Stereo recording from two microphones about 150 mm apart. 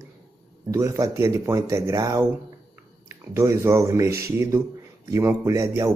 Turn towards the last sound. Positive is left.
turn(degrees=-20)  # may be behind; listen again after turning